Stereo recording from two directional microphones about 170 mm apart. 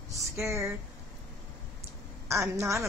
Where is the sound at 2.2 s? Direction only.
15° right (ahead or behind).